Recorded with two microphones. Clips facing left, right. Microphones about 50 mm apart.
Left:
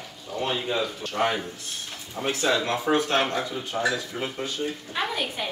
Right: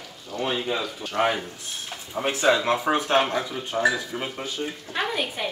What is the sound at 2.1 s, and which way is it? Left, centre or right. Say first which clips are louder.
Speech: right 3 dB; right.